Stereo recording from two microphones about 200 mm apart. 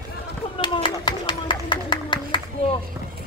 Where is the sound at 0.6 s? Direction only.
25° left (ahead or behind).